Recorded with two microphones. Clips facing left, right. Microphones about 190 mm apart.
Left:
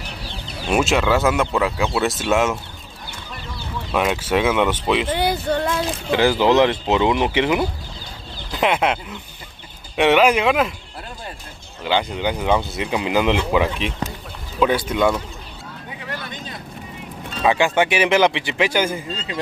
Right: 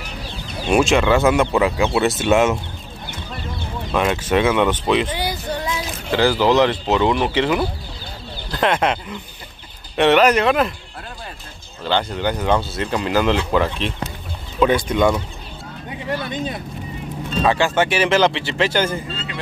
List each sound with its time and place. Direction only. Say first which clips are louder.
0.7 s speech: right 3 dB; 5° left (ahead or behind)
3.9 s speech: right 1 dB; 5° left (ahead or behind)
5.1 s a sound: left 5 dB; 55° left (ahead or behind)
6.1 s speech: even; 20° left (ahead or behind)
8.5 s speech: right 1 dB; 10° left (ahead or behind)
11.8 s speech: even; 10° left (ahead or behind)
17.4 s speech: even; 15° left (ahead or behind)
19.1 s a sound: left 2 dB; 40° left (ahead or behind)